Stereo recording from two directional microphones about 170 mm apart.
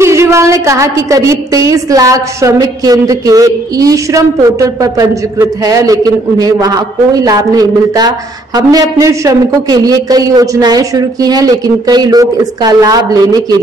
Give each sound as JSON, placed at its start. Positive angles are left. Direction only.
{"t": 0.0, "sound": "a woman's voice", "side_deg": -15}